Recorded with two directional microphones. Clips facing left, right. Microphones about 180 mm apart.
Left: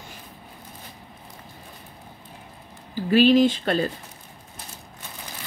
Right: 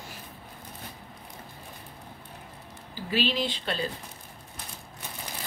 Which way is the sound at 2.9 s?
50° left (ahead or behind).